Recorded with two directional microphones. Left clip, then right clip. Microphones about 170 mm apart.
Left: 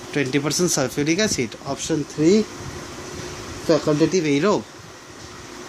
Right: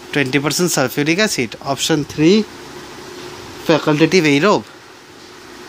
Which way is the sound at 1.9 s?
40° right (ahead or behind).